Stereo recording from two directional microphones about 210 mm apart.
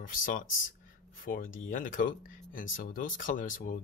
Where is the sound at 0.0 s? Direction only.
40° left (ahead or behind).